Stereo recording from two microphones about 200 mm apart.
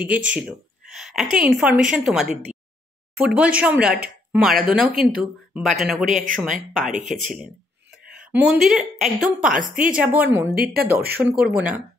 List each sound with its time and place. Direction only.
0.0 s a woman's voice: 5° right (ahead or behind)
6.0 s speech: 40° right (ahead or behind)
7.1 s a woman's voice: centre (ahead or behind)
10.5 s speech: 50° right (ahead or behind)
11.1 s speech: 10° right (ahead or behind)